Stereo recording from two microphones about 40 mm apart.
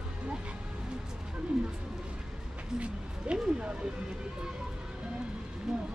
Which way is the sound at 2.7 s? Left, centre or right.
Right.